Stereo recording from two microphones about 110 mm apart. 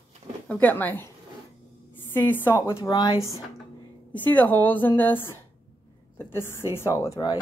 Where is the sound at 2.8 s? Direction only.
35° left (ahead or behind).